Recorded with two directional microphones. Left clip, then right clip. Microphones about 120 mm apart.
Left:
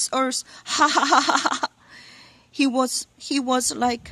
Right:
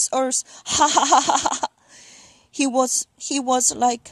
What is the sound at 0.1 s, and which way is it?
A woman's voice, 30° right (ahead or behind).